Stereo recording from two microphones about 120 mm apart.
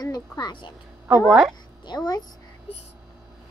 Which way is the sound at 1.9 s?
35° left (ahead or behind).